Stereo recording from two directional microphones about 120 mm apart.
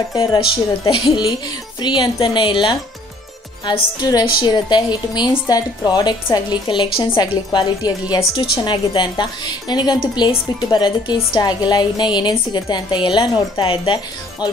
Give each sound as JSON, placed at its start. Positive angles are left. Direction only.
{"t": 0.3, "sound": "a woman's voice", "side_deg": 45}